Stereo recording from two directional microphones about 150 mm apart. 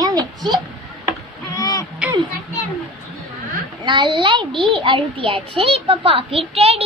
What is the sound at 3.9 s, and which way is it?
A child's voice, 30° right (ahead or behind).